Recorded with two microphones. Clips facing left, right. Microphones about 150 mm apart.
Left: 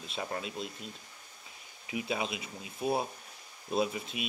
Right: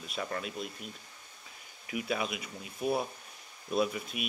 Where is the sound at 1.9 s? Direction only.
25° left (ahead or behind).